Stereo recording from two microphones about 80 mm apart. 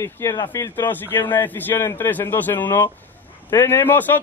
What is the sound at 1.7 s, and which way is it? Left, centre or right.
Speech, left.